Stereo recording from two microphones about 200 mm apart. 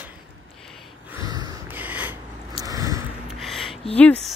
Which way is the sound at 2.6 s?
15° right (ahead or behind).